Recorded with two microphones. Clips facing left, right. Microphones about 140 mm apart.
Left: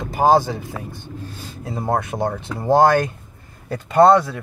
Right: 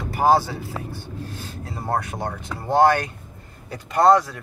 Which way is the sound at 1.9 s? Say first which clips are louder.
Left 4 dB; 20° left (ahead or behind).